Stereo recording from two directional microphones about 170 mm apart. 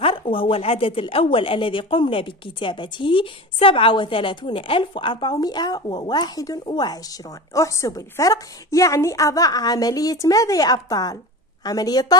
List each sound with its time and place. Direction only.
0.0 s speech: 30° left (ahead or behind)